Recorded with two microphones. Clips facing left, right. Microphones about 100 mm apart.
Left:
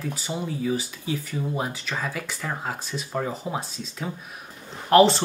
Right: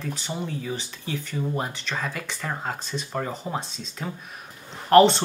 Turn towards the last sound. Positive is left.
turn(degrees=0)  # may be behind; listen again after turning